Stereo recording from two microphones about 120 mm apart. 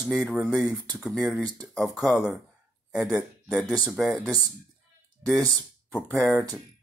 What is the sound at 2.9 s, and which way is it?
Speech, 5° right (ahead or behind).